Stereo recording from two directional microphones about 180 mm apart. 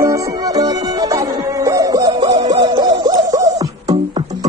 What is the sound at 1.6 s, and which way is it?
Hoot, 20° right (ahead or behind).